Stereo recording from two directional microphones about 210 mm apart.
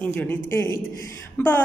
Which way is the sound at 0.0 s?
10° left (ahead or behind).